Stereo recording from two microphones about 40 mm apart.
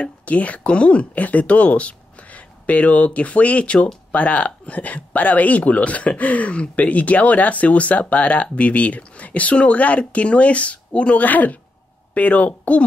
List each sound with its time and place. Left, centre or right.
0.0 s speech: left
11.2 s a woman's voice: left